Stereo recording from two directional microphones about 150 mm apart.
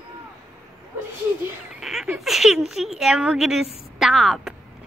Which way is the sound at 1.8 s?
5° right (ahead or behind).